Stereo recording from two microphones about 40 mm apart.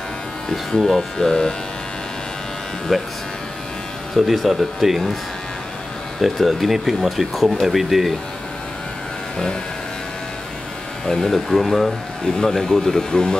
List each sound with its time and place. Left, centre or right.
0.7 s speech: centre
1.1 s speech: centre
2.9 s speech: centre
4.1 s speech: centre
6.2 s speech: centre
11.1 s speech: centre